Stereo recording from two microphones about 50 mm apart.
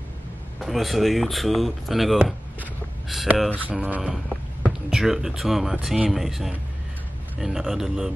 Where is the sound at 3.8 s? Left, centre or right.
Right.